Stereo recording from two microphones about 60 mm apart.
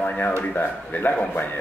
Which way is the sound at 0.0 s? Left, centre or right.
Left.